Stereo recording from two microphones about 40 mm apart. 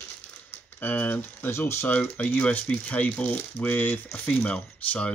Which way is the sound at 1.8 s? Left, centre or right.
Left.